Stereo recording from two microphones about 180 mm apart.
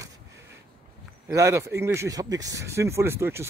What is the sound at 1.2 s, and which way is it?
Speech, 15° right (ahead or behind).